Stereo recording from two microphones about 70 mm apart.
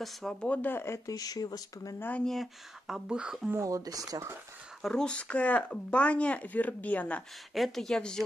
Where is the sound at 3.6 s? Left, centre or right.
Right.